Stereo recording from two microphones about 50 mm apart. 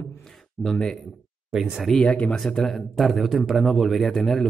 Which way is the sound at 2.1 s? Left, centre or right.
Left.